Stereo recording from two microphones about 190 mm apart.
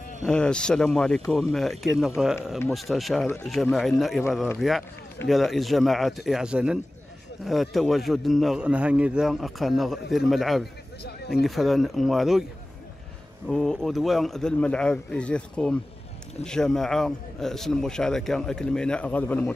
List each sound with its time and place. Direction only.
0.2 s a man's voice: 5° left (ahead or behind)
11.1 s speech: 55° left (ahead or behind)
11.4 s a man's voice: centre (ahead or behind)
13.5 s a man's voice: 5° left (ahead or behind)